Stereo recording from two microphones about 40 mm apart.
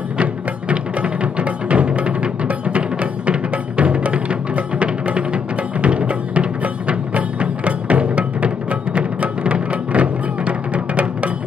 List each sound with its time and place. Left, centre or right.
0.2 s music: right